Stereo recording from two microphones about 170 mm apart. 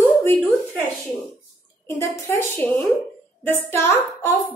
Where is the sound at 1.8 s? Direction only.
15° left (ahead or behind).